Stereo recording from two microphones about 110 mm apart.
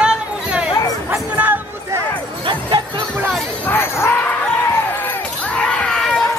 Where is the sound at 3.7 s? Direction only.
20° left (ahead or behind).